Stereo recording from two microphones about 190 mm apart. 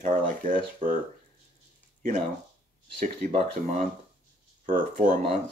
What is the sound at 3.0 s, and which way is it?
Speech, 40° right (ahead or behind).